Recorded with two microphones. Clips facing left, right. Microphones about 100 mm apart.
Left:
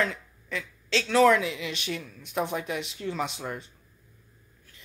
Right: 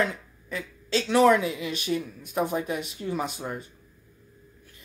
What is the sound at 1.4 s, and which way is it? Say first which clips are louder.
Speech: right 2 dB; 45° right (ahead or behind).